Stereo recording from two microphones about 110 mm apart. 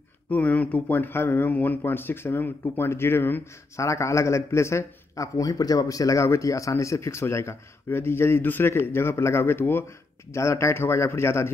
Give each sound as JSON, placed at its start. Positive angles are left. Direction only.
{"t": 0.3, "sound": "speech", "side_deg": 15}